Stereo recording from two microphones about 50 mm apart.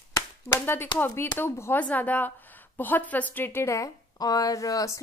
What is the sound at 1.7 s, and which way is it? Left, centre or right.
A woman's voice, left.